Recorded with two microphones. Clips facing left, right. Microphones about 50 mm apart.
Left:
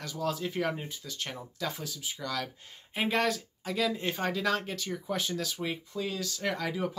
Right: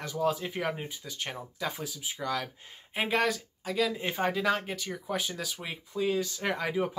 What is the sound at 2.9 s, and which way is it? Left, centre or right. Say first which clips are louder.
Speech: right 1 dB; centre.